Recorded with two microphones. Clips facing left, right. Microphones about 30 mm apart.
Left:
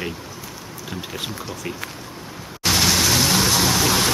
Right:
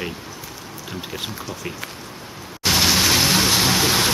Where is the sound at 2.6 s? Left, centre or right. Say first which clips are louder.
Right 1 dB; centre.